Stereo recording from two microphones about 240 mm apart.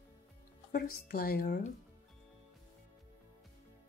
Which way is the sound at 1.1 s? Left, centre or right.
Left.